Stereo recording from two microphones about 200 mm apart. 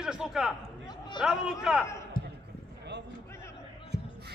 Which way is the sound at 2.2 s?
45° left (ahead or behind).